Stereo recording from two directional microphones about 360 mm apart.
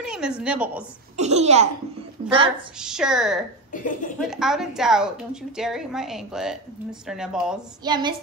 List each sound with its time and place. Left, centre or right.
0.0 s a woman's voice: centre
1.1 s a child's voice: centre
2.8 s a woman's voice: centre
3.7 s speech: left
4.2 s a woman's voice: centre